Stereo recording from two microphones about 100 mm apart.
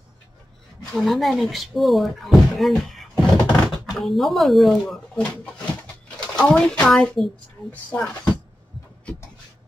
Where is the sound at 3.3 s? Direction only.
45° left (ahead or behind).